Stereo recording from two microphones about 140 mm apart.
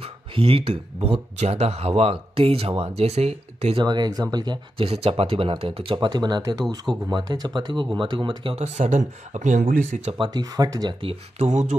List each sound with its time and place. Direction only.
0.0 s speech: 40° right (ahead or behind)
3.8 s speech: 30° right (ahead or behind)
4.8 s speech: 45° right (ahead or behind)
8.5 s speech: 55° right (ahead or behind); by 9.8 s 75° right (ahead or behind)
10.1 s speech: 30° right (ahead or behind)
11.3 s speech: 55° right (ahead or behind)